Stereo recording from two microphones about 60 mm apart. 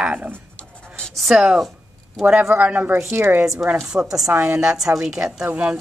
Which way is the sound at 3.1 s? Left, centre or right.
Right.